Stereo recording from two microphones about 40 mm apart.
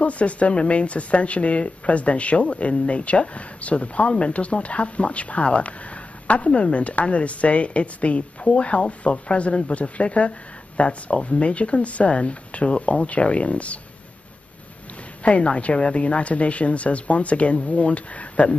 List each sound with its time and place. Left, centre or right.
0.0 s speech: left
15.2 s speech: left